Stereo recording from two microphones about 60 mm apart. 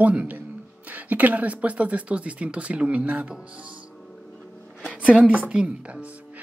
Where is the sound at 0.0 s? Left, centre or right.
Right.